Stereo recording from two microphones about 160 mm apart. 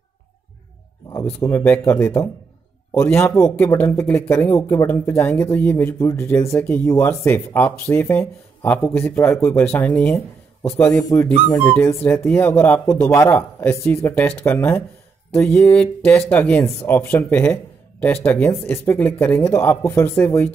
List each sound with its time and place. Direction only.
1.4 s a man's voice: 15° left (ahead or behind)